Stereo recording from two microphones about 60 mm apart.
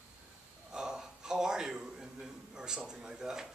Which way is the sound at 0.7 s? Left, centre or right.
Centre.